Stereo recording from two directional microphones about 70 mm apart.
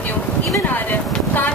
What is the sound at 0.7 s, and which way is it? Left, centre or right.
Speech, left.